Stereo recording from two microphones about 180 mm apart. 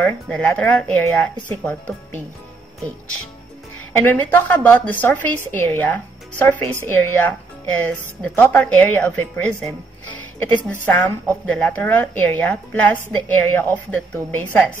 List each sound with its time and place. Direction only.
0.0 s speech: 10° left (ahead or behind)
3.9 s speech: 10° left (ahead or behind)